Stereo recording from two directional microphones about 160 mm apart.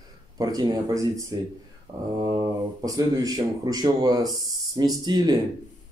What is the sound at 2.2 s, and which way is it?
Speech, 25° right (ahead or behind).